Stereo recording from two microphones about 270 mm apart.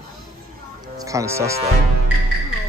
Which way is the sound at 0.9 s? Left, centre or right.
Centre.